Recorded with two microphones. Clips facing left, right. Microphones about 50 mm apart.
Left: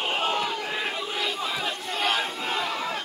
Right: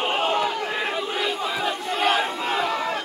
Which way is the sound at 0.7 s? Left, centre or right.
Centre.